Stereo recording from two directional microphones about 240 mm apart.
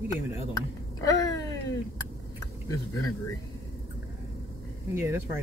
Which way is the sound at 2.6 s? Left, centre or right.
Centre.